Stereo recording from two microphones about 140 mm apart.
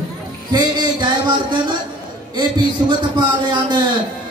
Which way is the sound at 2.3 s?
30° right (ahead or behind).